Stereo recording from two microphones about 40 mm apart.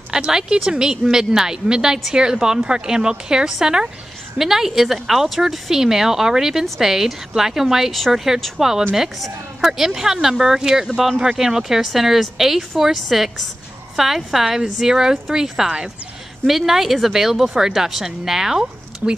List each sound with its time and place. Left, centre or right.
0.3 s a woman's voice: centre
10.7 s a woman's voice: right